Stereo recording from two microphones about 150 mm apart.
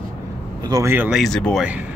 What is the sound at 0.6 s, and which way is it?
Speech, 25° right (ahead or behind).